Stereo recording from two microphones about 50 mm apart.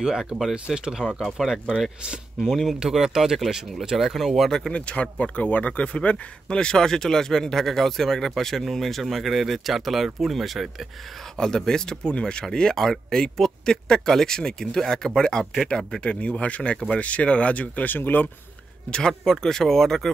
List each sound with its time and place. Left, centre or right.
0.0 s speech: centre
1.4 s speech: centre
1.8 s speech: centre
2.5 s speech: centre
4.5 s speech: centre
4.7 s speech: left; by 10.7 s centre
11.3 s speech: centre; by 17.9 s left
17.9 s speech: left
18.9 s speech: centre